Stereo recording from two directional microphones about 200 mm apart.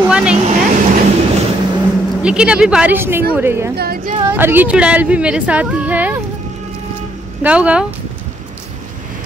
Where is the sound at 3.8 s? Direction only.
50° right (ahead or behind).